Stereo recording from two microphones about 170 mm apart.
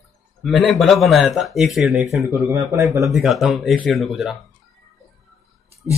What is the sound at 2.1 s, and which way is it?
Speech, 15° right (ahead or behind).